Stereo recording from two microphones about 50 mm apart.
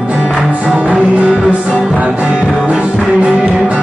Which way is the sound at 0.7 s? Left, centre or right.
Right.